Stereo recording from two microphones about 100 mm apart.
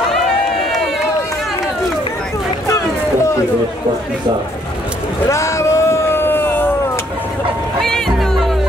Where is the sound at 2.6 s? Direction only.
30° left (ahead or behind).